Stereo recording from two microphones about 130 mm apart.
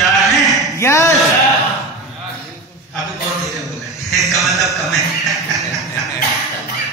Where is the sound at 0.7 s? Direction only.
20° left (ahead or behind).